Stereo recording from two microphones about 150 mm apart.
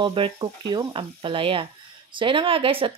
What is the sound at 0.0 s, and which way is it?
A woman's voice, 35° right (ahead or behind).